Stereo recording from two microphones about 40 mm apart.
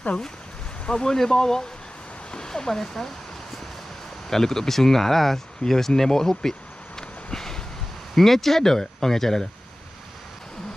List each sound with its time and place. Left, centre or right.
0.8 s speech: centre
4.3 s speech: centre
7.0 s a sound: centre
8.1 s speech: centre